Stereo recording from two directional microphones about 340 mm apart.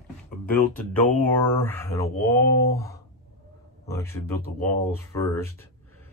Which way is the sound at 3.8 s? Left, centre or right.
Centre.